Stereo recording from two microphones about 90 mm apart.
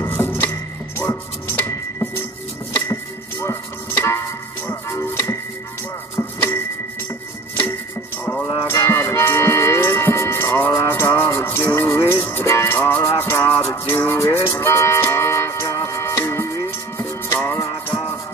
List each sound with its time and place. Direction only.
0.0 s music: 25° left (ahead or behind)
1.5 s music: 25° left (ahead or behind)
8.6 s music: 30° left (ahead or behind)